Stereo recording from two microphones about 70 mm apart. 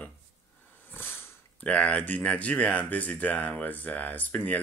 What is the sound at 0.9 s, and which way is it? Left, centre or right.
Sniff, left.